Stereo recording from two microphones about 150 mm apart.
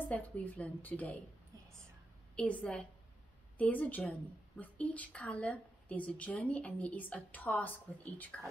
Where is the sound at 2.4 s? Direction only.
10° left (ahead or behind).